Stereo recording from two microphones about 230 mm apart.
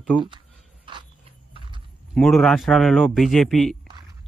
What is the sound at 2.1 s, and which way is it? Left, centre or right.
Speech, centre.